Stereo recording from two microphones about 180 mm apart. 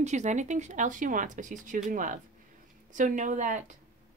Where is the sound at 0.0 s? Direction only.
40° right (ahead or behind).